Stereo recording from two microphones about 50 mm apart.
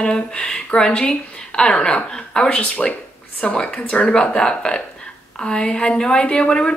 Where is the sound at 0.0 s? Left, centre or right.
Centre.